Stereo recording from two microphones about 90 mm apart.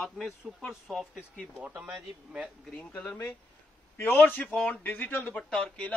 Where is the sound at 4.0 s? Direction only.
20° left (ahead or behind).